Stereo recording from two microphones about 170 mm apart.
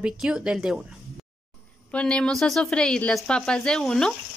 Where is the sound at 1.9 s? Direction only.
5° left (ahead or behind).